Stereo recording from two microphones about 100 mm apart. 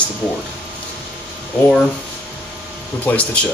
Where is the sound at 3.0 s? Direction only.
15° left (ahead or behind).